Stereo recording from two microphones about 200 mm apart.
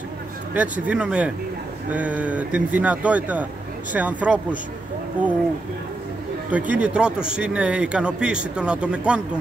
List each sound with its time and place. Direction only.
0.6 s speech: 5° right (ahead or behind)
6.5 s speech: 5° right (ahead or behind)